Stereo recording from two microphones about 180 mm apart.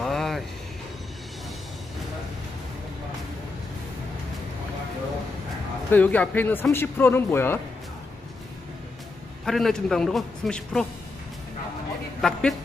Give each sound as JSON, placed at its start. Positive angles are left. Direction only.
{"t": 0.0, "sound": "vehicle", "side_deg": 0}
{"t": 5.9, "sound": "speech", "side_deg": 10}
{"t": 9.4, "sound": "a man's voice", "side_deg": 0}
{"t": 12.2, "sound": "a man's voice", "side_deg": 0}